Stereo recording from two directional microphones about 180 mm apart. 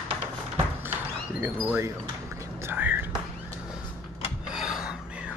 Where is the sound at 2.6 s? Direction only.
10° right (ahead or behind).